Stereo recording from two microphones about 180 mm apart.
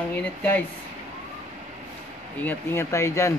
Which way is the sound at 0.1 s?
10° left (ahead or behind).